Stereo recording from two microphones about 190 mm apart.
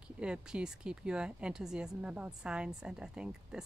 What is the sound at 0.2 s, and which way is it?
A woman's voice, 5° right (ahead or behind).